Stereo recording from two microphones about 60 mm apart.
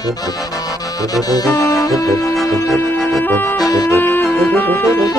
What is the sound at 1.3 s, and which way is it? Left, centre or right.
Music, left.